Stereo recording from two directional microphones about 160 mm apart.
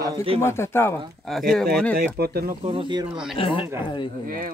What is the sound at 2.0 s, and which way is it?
Speech, 75° right (ahead or behind).